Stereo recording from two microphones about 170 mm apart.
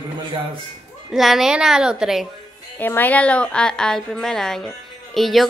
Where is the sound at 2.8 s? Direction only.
10° left (ahead or behind).